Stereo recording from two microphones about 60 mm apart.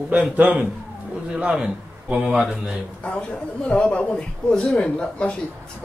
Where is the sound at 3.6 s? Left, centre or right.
Centre.